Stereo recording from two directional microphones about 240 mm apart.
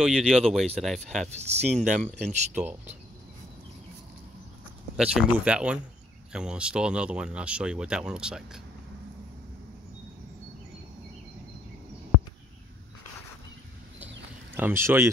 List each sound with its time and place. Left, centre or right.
0.0 s speech: centre
1.4 s speech: right
2.2 s speech: centre
4.9 s speech: centre
13.9 s a sound: centre